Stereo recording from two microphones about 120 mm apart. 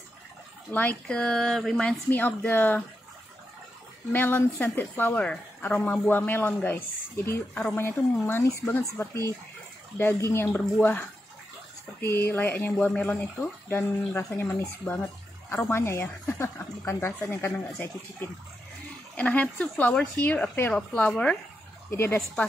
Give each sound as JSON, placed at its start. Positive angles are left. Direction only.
{"t": 0.7, "sound": "a woman's voice", "side_deg": 15}
{"t": 4.1, "sound": "a woman's voice", "side_deg": 15}
{"t": 19.1, "sound": "a woman's voice", "side_deg": 10}
{"t": 21.9, "sound": "a woman's voice", "side_deg": 20}